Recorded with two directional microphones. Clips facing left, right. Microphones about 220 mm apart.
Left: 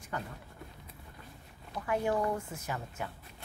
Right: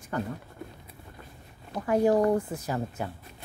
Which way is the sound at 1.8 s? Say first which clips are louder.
Right 8 dB; 40° right (ahead or behind).